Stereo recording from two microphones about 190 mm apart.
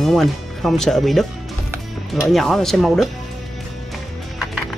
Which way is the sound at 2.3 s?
Centre (ahead or behind).